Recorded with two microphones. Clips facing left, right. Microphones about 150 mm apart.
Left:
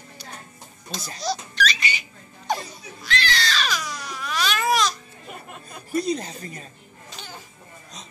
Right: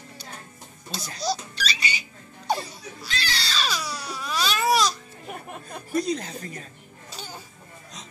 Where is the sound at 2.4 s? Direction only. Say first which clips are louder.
Even; 30° right (ahead or behind).